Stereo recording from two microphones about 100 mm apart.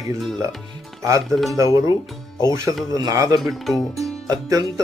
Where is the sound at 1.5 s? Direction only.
30° right (ahead or behind).